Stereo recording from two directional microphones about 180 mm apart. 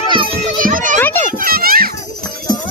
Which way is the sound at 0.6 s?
50° right (ahead or behind).